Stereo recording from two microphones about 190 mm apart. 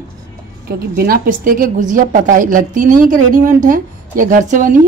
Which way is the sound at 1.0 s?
50° right (ahead or behind).